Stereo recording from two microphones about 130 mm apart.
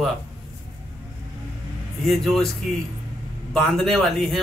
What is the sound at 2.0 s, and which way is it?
Speech, centre (ahead or behind).